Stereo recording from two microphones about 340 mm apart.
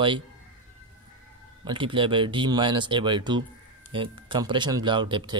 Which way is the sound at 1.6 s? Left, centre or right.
Centre.